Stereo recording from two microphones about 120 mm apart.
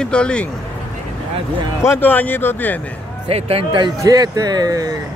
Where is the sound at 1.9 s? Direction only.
15° left (ahead or behind).